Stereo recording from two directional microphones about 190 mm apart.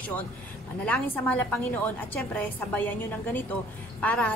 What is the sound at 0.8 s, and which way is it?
A woman's voice, 5° left (ahead or behind).